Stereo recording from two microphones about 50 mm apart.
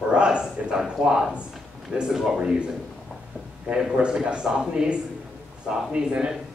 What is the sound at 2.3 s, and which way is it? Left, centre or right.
Speech, right.